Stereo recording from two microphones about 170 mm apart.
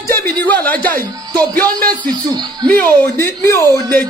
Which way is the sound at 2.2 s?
25° right (ahead or behind).